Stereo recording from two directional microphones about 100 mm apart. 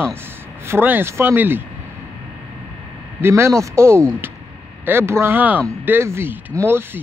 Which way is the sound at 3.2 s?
30° right (ahead or behind).